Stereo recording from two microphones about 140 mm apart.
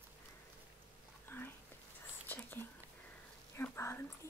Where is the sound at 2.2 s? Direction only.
15° left (ahead or behind).